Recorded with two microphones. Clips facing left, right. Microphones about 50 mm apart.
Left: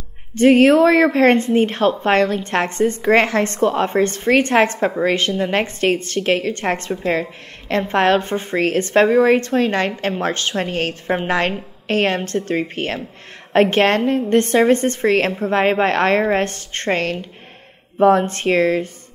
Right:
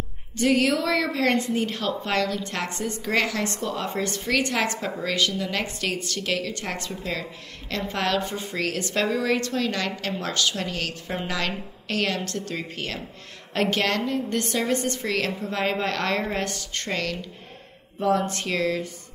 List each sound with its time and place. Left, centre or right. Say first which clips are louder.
0.3 s a woman's voice: left 10 dB; left